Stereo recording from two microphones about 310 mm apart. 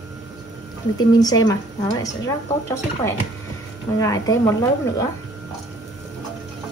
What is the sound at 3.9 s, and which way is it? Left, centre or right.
Speech, centre.